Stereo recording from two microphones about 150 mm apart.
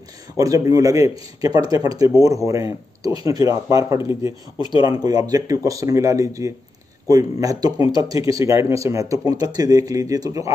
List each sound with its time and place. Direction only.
0.4 s speech: 20° right (ahead or behind)